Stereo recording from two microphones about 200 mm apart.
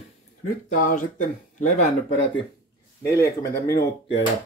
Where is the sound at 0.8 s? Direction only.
40° left (ahead or behind).